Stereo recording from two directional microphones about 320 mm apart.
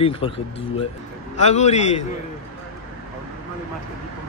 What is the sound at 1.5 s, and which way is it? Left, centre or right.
Speech, left.